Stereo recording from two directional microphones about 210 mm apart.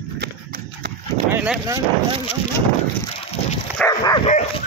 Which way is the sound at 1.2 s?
10° right (ahead or behind).